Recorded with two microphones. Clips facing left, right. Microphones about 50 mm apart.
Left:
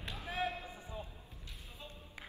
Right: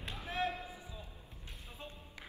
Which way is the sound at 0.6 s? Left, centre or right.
Left.